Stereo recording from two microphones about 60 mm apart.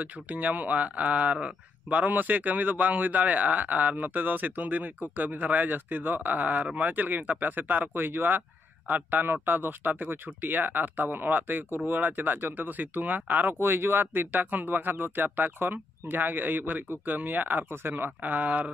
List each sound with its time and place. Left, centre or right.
0.0 s speech: right